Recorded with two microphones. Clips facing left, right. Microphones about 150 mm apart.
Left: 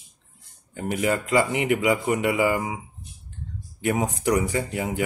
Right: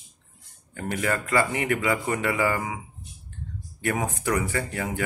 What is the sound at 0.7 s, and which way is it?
Speech, 15° left (ahead or behind).